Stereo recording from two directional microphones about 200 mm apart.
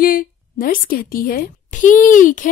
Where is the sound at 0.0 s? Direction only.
45° left (ahead or behind).